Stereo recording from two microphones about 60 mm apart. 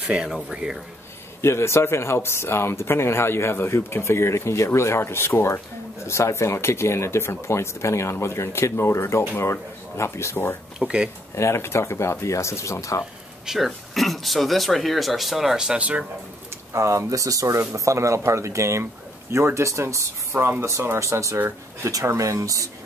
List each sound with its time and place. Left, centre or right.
0.5 s speech: centre
1.4 s speech: left
10.8 s speech: centre
11.3 s speech: left
13.5 s speech: centre
15.8 s speech: right
16.7 s speech: right
20.3 s speech: right
21.4 s speech: right
22.0 s speech: right